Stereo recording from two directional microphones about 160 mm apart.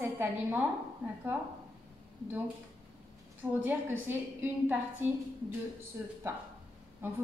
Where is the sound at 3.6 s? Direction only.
10° right (ahead or behind).